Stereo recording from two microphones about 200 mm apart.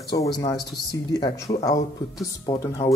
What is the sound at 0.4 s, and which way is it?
A woman's voice, 20° left (ahead or behind).